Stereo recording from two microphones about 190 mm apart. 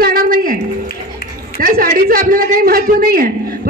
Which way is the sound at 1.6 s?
50° right (ahead or behind).